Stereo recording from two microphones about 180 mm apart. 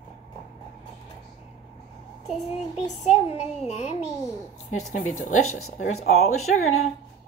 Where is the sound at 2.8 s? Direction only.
35° left (ahead or behind).